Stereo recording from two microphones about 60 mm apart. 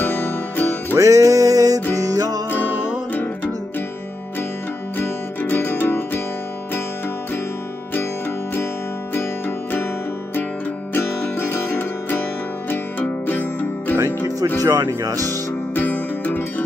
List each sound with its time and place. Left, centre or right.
0.0 s music: left
0.9 s music: right
4.9 s music: left
10.9 s music: left
13.9 s music: right
14.6 s music: right
14.9 s speech: right
15.7 s music: left